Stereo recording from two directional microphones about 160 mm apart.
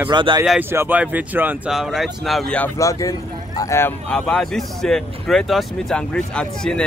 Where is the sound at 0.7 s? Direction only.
15° right (ahead or behind); by 2.7 s 5° left (ahead or behind).